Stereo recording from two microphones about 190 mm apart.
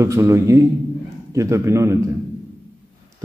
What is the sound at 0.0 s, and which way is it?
A man's voice, 15° right (ahead or behind).